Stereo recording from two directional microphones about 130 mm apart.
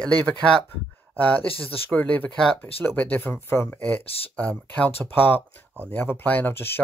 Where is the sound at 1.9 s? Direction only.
15° left (ahead or behind).